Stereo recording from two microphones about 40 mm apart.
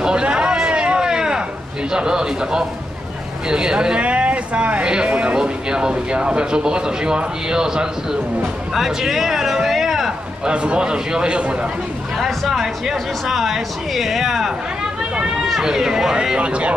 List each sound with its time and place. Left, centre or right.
0.0 s a sound: right
1.9 s speech: centre
4.0 s speech: right; by 8.2 s centre
8.7 s a sound: centre
10.5 s speech: right
12.2 s speech: centre
15.6 s speech: centre
16.3 s speech: right